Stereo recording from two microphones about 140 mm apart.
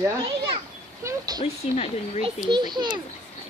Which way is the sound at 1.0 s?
30° right (ahead or behind).